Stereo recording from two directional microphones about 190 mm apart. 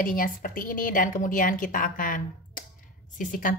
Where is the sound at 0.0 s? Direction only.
45° left (ahead or behind).